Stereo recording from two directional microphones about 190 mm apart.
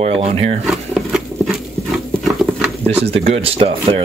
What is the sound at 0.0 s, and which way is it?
Speech, 30° right (ahead or behind).